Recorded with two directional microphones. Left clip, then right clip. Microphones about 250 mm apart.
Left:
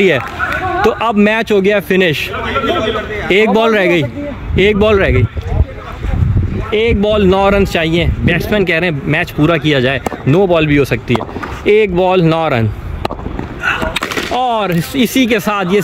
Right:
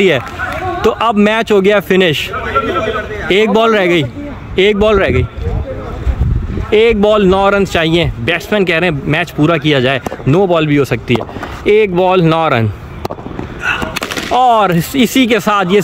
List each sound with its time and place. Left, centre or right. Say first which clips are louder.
0.7 s speech: right 1 dB; centre
2.4 s a sound: even; left
3.5 s speech: right 1 dB; centre
6.7 s speech: right 4 dB; centre
14.3 s speech: right 7 dB; centre